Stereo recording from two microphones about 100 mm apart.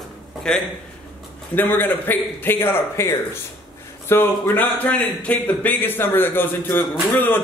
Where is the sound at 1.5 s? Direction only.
20° left (ahead or behind).